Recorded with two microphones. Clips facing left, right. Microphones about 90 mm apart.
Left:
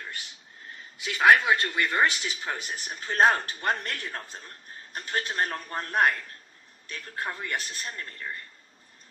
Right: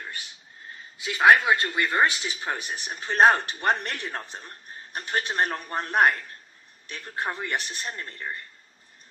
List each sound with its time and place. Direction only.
1.0 s speech: 25° right (ahead or behind)